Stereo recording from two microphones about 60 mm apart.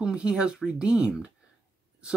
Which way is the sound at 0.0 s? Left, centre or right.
Centre.